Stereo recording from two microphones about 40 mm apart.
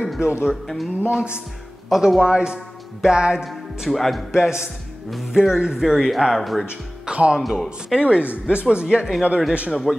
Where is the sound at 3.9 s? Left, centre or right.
Centre.